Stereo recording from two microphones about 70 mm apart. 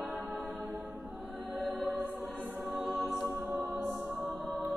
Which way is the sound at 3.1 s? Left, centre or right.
Centre.